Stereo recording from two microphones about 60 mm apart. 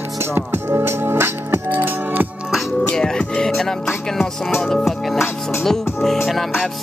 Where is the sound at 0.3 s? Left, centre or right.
Right.